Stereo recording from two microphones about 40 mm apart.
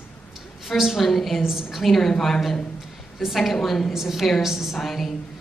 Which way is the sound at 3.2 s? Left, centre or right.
Centre.